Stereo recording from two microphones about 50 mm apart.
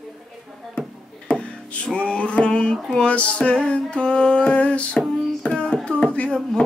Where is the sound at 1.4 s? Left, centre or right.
Left.